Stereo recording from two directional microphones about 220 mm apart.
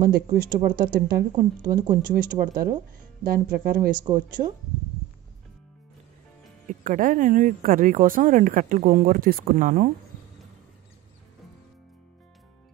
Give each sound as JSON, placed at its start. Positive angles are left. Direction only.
{"t": 0.0, "sound": "speech", "side_deg": -45}
{"t": 1.3, "sound": "speech", "side_deg": -20}
{"t": 1.9, "sound": "speech", "side_deg": -40}
{"t": 3.9, "sound": "speech", "side_deg": -20}
{"t": 6.7, "sound": "speech", "side_deg": -35}